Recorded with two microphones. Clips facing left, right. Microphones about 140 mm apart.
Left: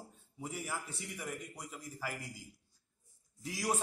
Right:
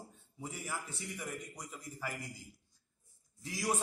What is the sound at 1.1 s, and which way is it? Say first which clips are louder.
A man's voice: left 2 dB; 5° left (ahead or behind).